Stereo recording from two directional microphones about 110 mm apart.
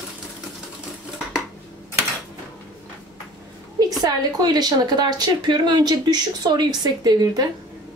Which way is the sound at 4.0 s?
35° right (ahead or behind).